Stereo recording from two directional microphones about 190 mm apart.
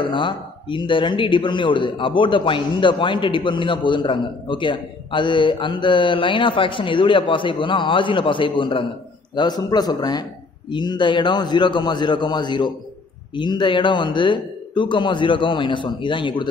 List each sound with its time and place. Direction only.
0.0 s a man's voice: 25° left (ahead or behind)